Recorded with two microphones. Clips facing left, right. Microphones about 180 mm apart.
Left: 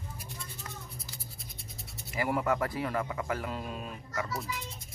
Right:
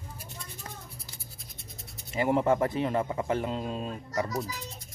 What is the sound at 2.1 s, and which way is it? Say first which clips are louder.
Speech: right 5 dB; 25° right (ahead or behind).